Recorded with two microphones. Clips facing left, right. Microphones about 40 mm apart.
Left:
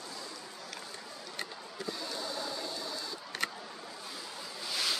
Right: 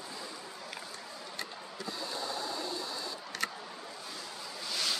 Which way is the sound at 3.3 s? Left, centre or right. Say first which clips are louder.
Left 1 dB; left.